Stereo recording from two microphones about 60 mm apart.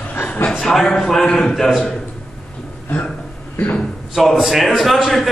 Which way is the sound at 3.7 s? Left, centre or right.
Centre.